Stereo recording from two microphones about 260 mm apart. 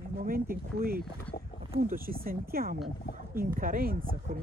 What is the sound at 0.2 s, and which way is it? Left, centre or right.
Speech, right.